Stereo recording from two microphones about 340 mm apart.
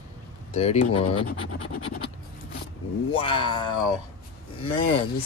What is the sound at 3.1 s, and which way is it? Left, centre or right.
Speech, centre.